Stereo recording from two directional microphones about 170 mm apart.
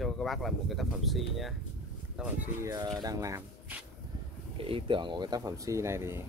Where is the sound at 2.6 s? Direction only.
20° right (ahead or behind).